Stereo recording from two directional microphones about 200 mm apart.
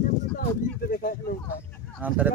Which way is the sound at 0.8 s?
45° left (ahead or behind).